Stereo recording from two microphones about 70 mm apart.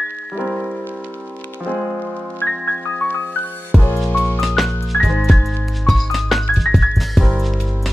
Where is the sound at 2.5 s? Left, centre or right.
Centre.